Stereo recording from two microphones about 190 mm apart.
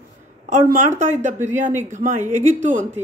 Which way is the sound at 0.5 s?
40° right (ahead or behind).